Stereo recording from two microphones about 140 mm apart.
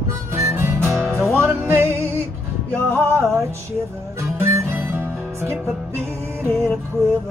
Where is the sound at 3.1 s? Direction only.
20° right (ahead or behind).